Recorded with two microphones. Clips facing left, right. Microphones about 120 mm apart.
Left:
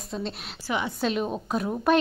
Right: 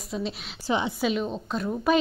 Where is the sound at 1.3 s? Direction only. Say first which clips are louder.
Left 2 dB; 10° left (ahead or behind).